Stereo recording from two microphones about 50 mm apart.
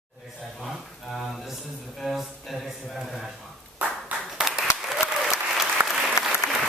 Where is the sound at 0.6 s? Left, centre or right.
Centre.